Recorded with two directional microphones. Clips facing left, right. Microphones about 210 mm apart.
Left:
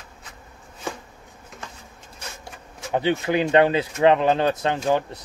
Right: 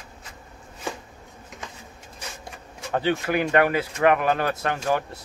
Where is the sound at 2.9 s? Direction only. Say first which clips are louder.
Left 2 dB; 20° left (ahead or behind).